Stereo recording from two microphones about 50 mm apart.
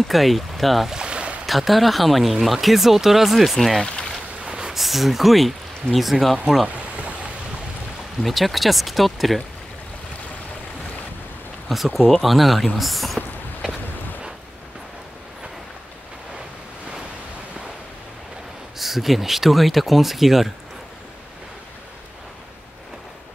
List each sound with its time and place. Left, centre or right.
0.1 s speech: centre
0.8 s boat: centre
1.4 s speech: centre
3.8 s a sound: centre
4.5 s a sound: centre
4.7 s speech: centre
8.2 s speech: centre
11.7 s speech: centre
18.8 s speech: centre